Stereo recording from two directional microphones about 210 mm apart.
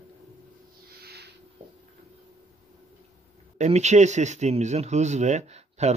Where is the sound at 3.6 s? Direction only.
35° right (ahead or behind).